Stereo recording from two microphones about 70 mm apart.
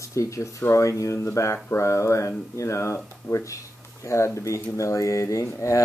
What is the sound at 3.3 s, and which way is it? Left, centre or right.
Speech, left.